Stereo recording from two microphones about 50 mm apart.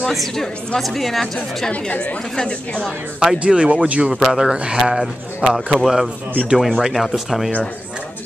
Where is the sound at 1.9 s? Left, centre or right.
Left.